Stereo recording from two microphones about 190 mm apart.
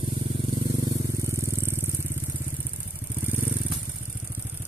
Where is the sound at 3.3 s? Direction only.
10° right (ahead or behind).